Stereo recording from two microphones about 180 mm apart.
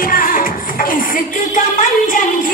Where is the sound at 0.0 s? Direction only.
50° left (ahead or behind).